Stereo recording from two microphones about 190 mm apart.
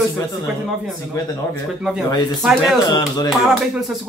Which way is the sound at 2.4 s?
Centre (ahead or behind).